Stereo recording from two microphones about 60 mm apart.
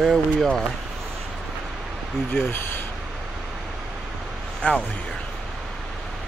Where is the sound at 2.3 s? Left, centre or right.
Left.